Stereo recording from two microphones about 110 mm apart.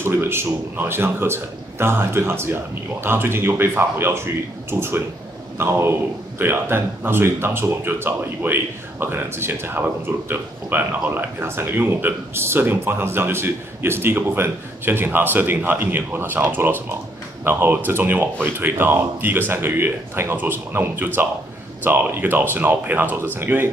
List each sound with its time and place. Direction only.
0.0 s speech: 20° right (ahead or behind)